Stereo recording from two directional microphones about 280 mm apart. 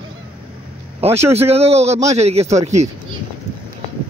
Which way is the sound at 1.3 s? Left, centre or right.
Right.